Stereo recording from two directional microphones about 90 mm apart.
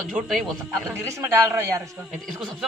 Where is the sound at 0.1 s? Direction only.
Centre (ahead or behind).